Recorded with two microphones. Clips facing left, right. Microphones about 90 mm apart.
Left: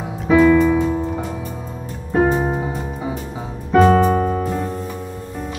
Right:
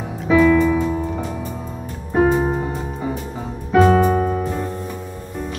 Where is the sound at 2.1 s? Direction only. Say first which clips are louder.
Right 1 dB; centre (ahead or behind).